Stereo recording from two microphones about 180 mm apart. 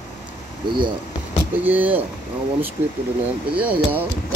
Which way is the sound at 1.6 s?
10° right (ahead or behind).